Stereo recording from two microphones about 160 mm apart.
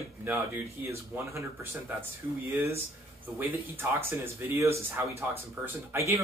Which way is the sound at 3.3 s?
15° right (ahead or behind).